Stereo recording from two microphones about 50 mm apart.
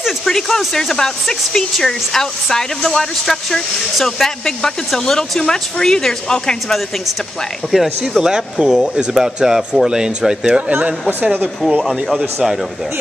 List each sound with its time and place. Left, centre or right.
0.2 s speech: centre
7.7 s speech: centre
10.7 s speech: right
11.8 s speech: centre